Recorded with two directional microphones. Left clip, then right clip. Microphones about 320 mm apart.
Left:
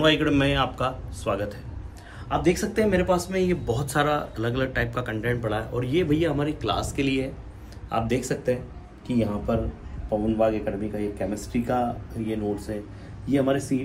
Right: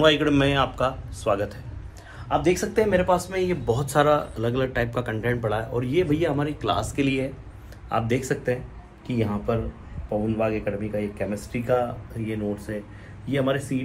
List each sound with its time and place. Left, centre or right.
0.0 s speech: centre; by 12.7 s right